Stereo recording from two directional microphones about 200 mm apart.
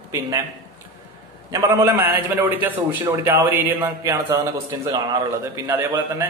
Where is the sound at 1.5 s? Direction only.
15° right (ahead or behind).